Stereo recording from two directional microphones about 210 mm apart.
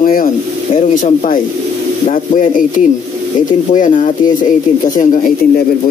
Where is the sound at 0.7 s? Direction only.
40° left (ahead or behind).